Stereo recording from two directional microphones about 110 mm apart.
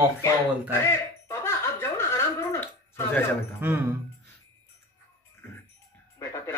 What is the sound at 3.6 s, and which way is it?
Speech, 20° right (ahead or behind).